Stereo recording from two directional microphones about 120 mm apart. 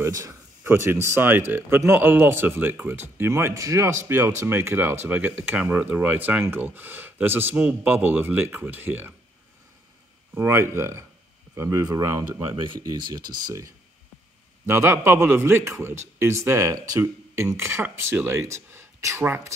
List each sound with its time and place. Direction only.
0.0 s speech: 25° right (ahead or behind)
10.3 s speech: 20° right (ahead or behind)